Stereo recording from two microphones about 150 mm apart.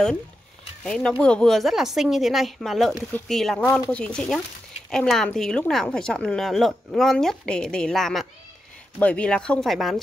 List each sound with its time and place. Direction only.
0.8 s a woman's voice: 5° left (ahead or behind)